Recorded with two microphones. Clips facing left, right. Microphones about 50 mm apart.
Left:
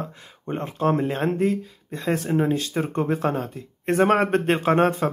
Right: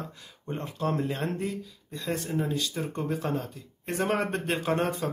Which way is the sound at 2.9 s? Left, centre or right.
Left.